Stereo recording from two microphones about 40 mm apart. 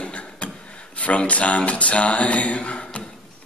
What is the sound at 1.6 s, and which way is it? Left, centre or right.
Music, left.